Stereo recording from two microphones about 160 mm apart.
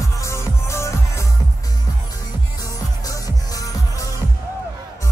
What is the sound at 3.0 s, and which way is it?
Music, 20° left (ahead or behind).